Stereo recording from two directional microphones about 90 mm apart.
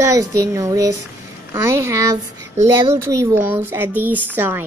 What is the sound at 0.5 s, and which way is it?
Speech, 35° right (ahead or behind).